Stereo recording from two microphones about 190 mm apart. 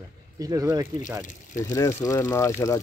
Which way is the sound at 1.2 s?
40° left (ahead or behind).